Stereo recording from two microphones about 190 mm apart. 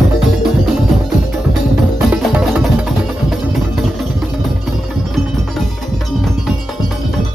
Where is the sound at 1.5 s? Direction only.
5° right (ahead or behind).